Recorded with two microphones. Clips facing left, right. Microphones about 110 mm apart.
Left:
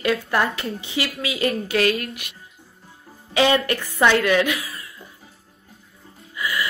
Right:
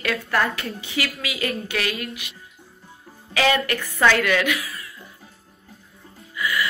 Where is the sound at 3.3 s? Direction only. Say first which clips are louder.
Left 2 dB; 25° left (ahead or behind).